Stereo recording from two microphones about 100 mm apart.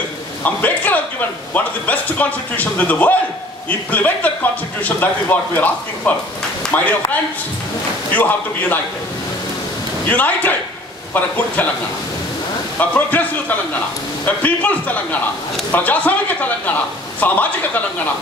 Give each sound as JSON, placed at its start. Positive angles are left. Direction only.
{"t": 0.4, "sound": "a man's voice", "side_deg": 15}
{"t": 10.0, "sound": "speech", "side_deg": 15}
{"t": 12.7, "sound": "speech", "side_deg": 15}